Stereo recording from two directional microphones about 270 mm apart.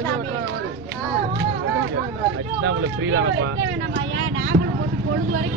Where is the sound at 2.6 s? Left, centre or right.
Right.